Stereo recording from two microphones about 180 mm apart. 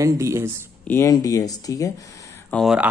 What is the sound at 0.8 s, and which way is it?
Speech, 15° left (ahead or behind).